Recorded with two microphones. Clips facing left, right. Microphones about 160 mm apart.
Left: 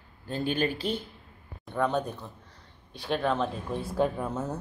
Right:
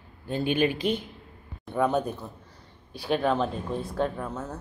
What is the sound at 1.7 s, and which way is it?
A woman's voice, 5° right (ahead or behind).